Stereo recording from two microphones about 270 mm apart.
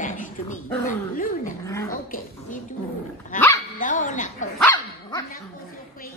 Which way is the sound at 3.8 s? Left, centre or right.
Left.